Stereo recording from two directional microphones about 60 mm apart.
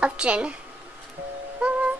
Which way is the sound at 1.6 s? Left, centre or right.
Centre.